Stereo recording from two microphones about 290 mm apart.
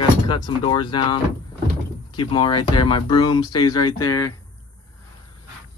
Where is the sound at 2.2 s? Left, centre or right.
Centre.